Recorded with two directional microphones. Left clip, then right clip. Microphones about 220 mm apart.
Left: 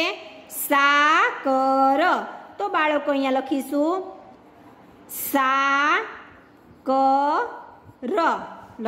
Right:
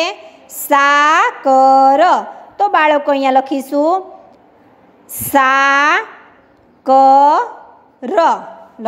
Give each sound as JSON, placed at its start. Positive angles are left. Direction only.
{"t": 0.7, "sound": "speech", "side_deg": -20}
{"t": 5.1, "sound": "speech", "side_deg": -20}